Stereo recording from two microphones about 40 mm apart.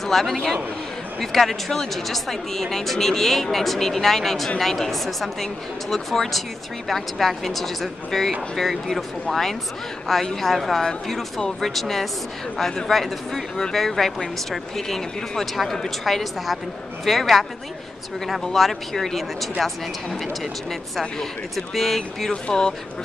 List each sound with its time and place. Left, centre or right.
0.0 s a man's voice: centre
18.5 s speech: centre
21.0 s speech: centre
22.3 s speech: centre